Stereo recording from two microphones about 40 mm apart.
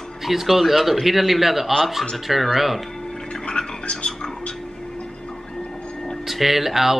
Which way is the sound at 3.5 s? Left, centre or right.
Left.